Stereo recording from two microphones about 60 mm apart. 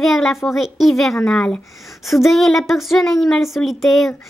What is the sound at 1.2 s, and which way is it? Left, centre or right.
Speech, centre.